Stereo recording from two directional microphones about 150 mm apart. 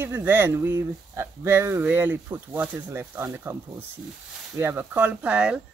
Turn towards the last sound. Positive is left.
turn(degrees=-10)  # may be behind; listen again after turning